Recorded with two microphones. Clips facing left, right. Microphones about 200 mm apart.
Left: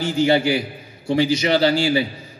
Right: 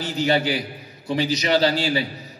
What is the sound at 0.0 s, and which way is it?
A man's voice, 25° left (ahead or behind).